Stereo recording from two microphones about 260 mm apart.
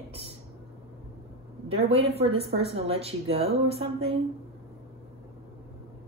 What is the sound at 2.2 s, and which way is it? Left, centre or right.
A woman's voice, right.